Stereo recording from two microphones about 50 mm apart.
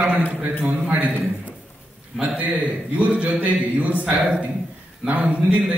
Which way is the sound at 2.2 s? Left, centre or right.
Right.